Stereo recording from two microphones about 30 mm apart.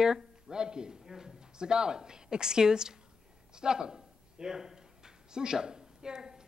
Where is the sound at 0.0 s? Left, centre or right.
Right.